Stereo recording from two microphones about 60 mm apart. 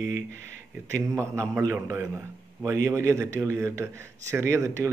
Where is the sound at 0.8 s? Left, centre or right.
Right.